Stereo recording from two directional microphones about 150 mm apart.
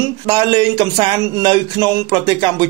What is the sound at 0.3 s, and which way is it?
Speech, 30° right (ahead or behind).